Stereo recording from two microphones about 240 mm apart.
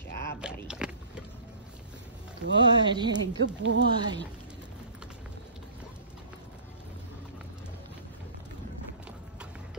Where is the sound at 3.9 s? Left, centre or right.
Centre.